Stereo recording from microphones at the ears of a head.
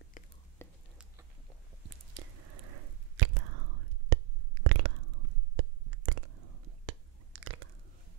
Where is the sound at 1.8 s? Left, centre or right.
Right.